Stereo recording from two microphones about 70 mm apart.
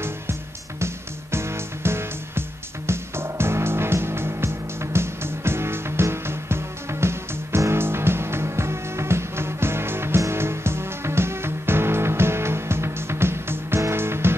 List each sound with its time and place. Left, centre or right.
0.0 s music: right